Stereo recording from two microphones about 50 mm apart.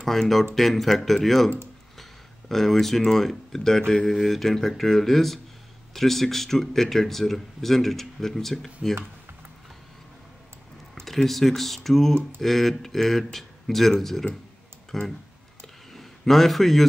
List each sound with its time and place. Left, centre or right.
0.0 s speech: centre
11.0 s speech: centre
15.6 s a sound: centre